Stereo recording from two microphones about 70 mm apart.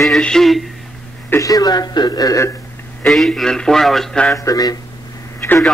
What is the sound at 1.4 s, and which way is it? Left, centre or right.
Speech, left.